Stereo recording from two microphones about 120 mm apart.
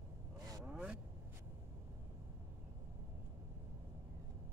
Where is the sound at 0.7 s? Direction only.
5° right (ahead or behind).